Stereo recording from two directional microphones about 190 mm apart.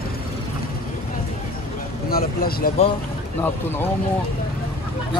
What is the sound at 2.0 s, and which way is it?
Speech, 50° left (ahead or behind).